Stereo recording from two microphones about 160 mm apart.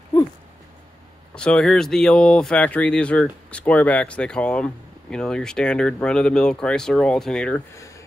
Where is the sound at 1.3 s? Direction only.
5° left (ahead or behind).